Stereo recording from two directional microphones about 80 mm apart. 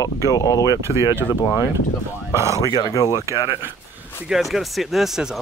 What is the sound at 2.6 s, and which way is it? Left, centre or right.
Speech, left.